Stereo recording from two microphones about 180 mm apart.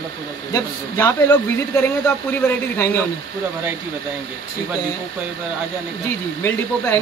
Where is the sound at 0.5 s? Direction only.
15° left (ahead or behind).